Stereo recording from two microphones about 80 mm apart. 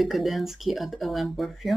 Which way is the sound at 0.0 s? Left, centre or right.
Centre.